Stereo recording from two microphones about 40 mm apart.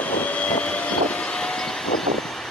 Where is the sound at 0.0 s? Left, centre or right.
Left; by 2.1 s centre.